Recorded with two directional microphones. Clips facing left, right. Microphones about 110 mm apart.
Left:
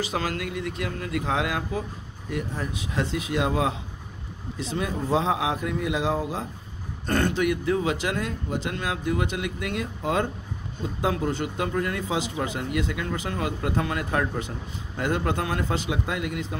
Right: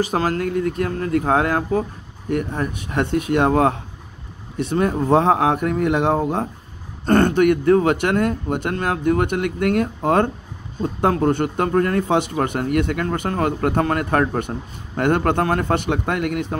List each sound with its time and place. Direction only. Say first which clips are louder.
0.0 s a man's voice: right 8 dB; 45° right (ahead or behind); by 16.5 s 60° right (ahead or behind)